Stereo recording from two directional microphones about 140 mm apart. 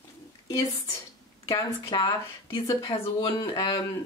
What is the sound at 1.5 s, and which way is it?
Speech, 35° left (ahead or behind).